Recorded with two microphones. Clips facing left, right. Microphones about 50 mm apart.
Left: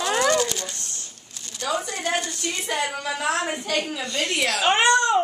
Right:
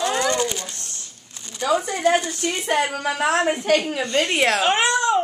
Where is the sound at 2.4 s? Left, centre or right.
Right.